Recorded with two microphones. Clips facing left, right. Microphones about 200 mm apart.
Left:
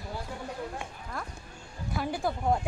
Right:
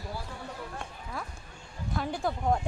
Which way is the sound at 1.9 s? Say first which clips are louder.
Left 1 dB; 5° left (ahead or behind).